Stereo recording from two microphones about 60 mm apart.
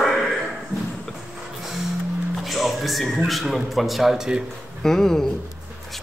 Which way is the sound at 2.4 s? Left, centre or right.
Centre.